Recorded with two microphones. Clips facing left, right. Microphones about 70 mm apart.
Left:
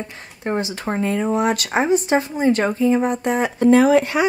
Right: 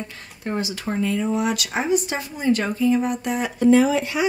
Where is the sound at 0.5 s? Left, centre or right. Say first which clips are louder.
Left 3 dB; left.